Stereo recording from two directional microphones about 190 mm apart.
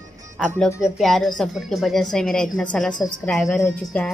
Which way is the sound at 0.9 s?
Centre (ahead or behind).